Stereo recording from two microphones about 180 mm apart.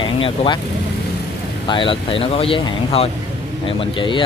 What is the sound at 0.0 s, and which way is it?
Speech, 30° left (ahead or behind).